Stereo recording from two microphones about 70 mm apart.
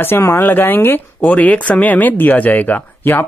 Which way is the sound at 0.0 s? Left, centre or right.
Left.